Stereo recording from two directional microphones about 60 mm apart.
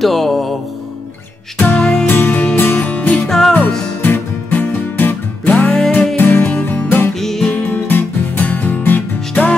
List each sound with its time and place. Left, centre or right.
0.0 s music: centre
1.6 s music: centre
2.0 s music: left
3.3 s music: centre
4.0 s music: left
5.7 s music: centre
6.1 s music: left
7.2 s music: centre
7.5 s music: left